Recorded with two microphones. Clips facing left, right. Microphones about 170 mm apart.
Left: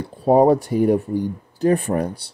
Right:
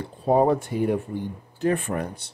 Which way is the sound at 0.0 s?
35° left (ahead or behind).